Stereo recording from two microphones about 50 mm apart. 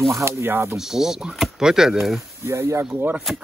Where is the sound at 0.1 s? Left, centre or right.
Right.